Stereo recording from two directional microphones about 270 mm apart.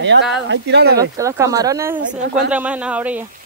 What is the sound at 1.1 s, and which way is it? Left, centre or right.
Speech, centre.